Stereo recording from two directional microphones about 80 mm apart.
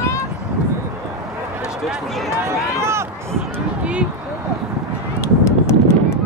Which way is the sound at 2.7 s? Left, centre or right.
Right.